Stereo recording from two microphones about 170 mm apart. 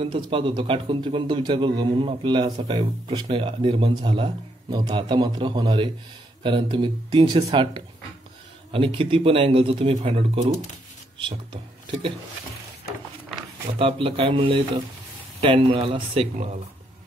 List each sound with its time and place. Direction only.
0.0 s a man's voice: 30° right (ahead or behind)
13.7 s speech: 30° right (ahead or behind)